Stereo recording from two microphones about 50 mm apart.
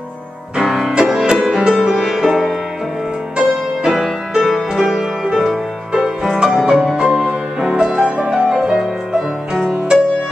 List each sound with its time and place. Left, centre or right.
0.6 s music: centre